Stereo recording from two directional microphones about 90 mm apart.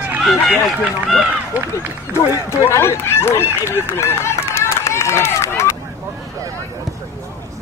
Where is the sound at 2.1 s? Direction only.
35° left (ahead or behind).